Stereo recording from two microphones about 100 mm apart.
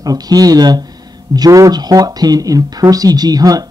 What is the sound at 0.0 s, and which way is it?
Speech, 40° right (ahead or behind).